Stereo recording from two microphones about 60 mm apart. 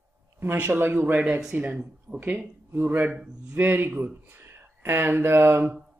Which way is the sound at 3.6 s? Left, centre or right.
Right.